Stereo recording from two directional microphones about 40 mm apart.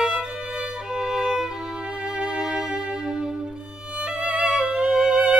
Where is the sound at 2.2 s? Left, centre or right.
Centre.